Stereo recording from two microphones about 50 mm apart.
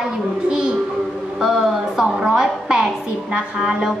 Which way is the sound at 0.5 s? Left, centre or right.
Centre.